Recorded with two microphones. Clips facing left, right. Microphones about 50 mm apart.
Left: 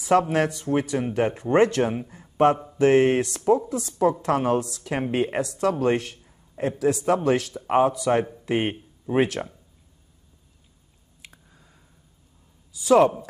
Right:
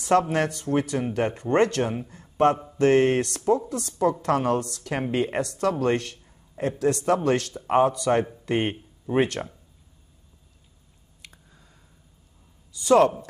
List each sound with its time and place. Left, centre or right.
0.0 s speech: centre
5.6 s speech: centre
12.8 s a woman's voice: centre